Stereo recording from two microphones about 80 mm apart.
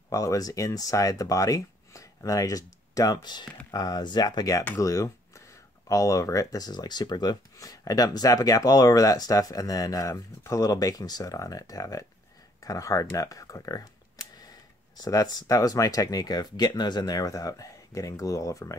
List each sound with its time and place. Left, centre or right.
0.1 s speech: left
4.7 s speech: left
7.5 s speech: left
15.0 s speech: left
17.1 s speech: left